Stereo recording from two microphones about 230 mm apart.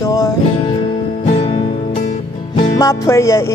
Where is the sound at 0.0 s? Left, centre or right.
Centre.